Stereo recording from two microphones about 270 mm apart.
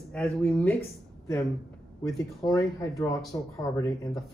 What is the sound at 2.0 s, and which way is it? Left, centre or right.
Speech, centre.